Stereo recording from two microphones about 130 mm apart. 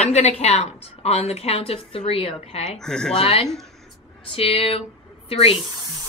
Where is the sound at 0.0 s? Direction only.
60° left (ahead or behind).